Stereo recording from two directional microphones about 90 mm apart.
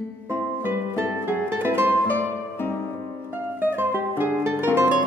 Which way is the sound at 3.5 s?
20° right (ahead or behind).